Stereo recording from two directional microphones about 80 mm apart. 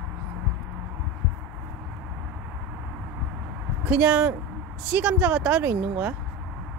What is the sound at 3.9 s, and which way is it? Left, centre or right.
Speech, centre.